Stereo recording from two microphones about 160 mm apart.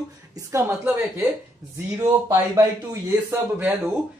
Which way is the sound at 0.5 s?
15° right (ahead or behind).